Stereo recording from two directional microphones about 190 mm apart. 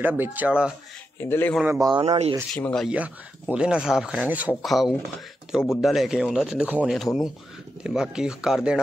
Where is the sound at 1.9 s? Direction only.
35° right (ahead or behind).